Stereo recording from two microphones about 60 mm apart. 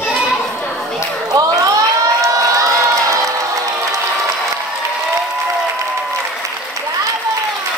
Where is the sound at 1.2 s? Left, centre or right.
Right.